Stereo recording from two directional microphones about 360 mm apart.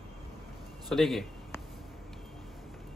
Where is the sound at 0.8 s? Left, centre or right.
Centre.